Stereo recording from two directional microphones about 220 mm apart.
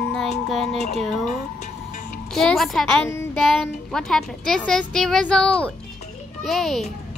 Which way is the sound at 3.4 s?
Centre (ahead or behind).